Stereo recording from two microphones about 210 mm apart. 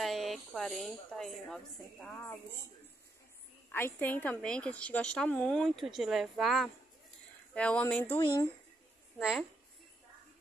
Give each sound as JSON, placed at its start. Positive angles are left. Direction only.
{"t": 0.0, "sound": "a woman's voice", "side_deg": 0}
{"t": 3.7, "sound": "a woman's voice", "side_deg": 10}
{"t": 9.2, "sound": "a woman's voice", "side_deg": 0}